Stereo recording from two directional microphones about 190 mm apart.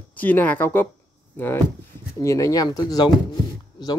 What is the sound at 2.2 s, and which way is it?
Speech, 15° left (ahead or behind).